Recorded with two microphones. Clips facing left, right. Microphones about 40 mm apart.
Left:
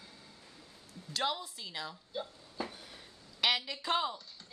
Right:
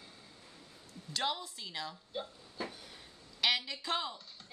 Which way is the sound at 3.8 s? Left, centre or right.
Centre.